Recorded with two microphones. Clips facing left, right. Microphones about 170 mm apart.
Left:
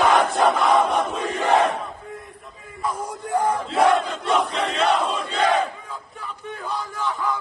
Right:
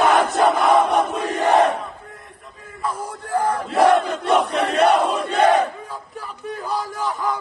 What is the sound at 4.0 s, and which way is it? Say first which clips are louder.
Crowd: right 3 dB; 60° right (ahead or behind).